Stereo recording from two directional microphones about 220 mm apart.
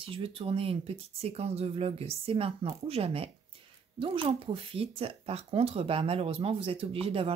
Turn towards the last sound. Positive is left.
turn(degrees=-25)  # may be behind; listen again after turning